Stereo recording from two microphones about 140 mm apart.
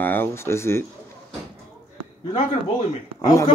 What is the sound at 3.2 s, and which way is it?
Speech, 25° left (ahead or behind).